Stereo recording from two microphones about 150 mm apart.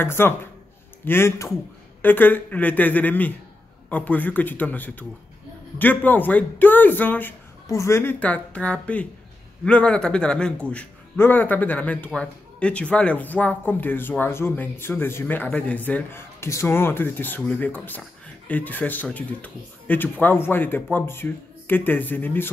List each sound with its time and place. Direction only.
0.0 s a man's voice: 15° left (ahead or behind)